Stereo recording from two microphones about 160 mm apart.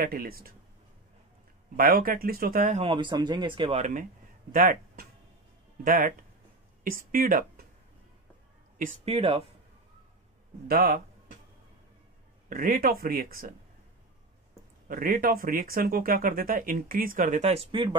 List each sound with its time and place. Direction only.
0.0 s speech: 65° right (ahead or behind)
1.8 s speech: 70° right (ahead or behind)
2.8 s speech: 30° right (ahead or behind)
3.8 s speech: 55° right (ahead or behind)
9.0 s speech: 35° right (ahead or behind)
10.7 s speech: 70° right (ahead or behind)
12.4 s speech: 60° right (ahead or behind)
14.9 s speech: 60° right (ahead or behind); by 17.9 s 35° right (ahead or behind)